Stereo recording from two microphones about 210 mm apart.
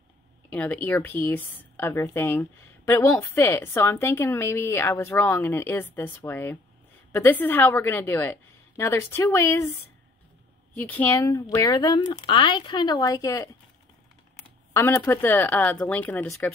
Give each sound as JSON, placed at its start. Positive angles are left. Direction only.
{"t": 0.5, "sound": "a woman's voice", "side_deg": 5}
{"t": 10.8, "sound": "a woman's voice", "side_deg": 10}
{"t": 14.7, "sound": "a woman's voice", "side_deg": 15}